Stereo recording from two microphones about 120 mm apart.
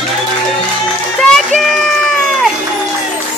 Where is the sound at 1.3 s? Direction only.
Centre (ahead or behind).